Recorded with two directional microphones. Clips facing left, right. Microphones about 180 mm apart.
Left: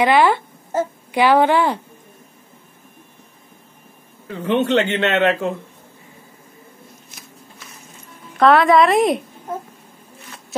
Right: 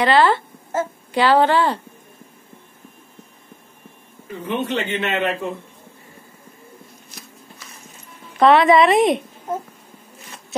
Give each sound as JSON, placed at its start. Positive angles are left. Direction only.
{"t": 0.0, "sound": "a woman's voice", "side_deg": 15}
{"t": 4.3, "sound": "a man's voice", "side_deg": 70}
{"t": 8.4, "sound": "a woman's voice", "side_deg": 0}